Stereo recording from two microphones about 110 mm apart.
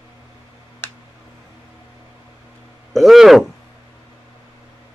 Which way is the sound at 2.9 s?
Centre (ahead or behind).